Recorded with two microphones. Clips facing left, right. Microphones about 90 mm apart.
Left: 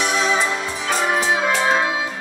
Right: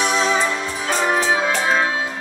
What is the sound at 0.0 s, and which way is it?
Music, 35° right (ahead or behind).